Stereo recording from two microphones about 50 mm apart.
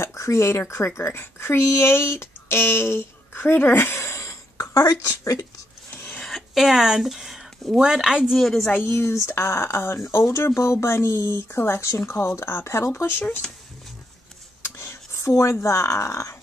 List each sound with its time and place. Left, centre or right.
0.0 s speech: left
6.2 s a sound: centre
7.8 s speech: centre
8.3 s a woman's voice: centre
8.5 s a woman's voice: left
8.9 s speech: left
10.4 s speech: left
12.9 s a woman's voice: left
13.4 s speech: centre
14.6 s a sound: left
15.6 s speech: left